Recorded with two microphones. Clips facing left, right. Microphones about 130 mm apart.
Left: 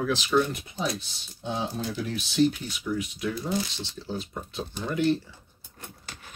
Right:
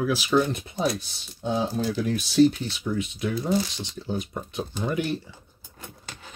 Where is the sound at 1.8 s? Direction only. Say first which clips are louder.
Right 5 dB; 40° right (ahead or behind).